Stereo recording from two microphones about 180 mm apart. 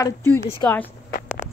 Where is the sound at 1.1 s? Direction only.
50° left (ahead or behind).